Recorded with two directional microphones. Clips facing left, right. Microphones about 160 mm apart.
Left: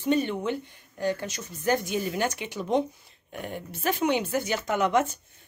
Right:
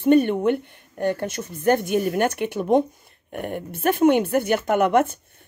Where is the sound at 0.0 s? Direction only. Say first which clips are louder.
Right 8 dB; 55° right (ahead or behind).